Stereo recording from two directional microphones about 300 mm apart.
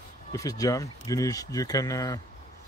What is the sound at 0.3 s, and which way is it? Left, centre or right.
Speech, centre.